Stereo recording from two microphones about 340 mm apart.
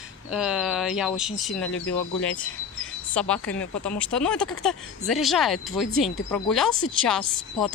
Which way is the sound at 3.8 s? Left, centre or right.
Centre.